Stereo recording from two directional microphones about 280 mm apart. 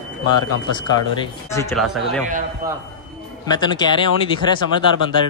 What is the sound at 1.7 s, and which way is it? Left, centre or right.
Speech, centre.